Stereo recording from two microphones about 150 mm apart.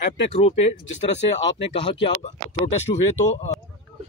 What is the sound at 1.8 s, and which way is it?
Speech, 40° left (ahead or behind).